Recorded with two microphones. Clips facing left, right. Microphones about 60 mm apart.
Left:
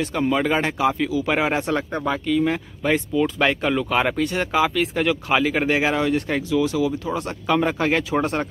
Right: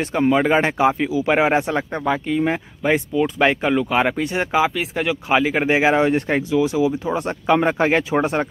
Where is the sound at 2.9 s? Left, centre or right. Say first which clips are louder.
Right 1 dB; centre.